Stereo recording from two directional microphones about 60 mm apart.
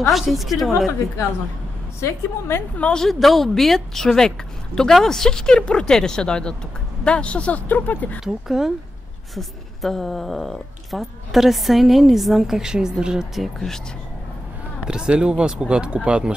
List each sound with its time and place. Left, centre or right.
0.1 s a woman's voice: centre
2.0 s a woman's voice: left
2.8 s a woman's voice: centre; by 8.2 s left
8.2 s a woman's voice: centre
14.9 s speech: centre